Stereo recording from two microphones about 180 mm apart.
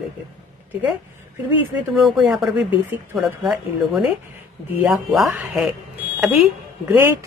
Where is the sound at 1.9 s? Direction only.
Centre (ahead or behind).